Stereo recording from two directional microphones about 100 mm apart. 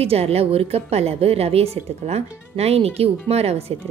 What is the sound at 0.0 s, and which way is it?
A woman's voice, 85° right.